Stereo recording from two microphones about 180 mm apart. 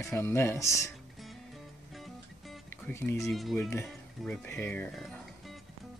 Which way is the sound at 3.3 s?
Centre (ahead or behind).